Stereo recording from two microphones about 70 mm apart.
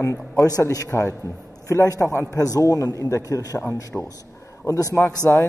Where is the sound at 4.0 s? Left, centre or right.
Left.